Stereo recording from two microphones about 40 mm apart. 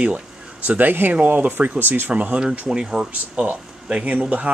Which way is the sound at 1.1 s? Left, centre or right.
Right.